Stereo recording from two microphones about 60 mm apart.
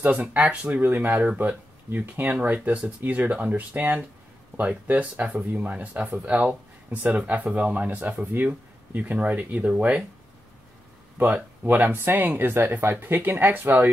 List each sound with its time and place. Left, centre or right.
0.0 s speech: right
11.6 s speech: right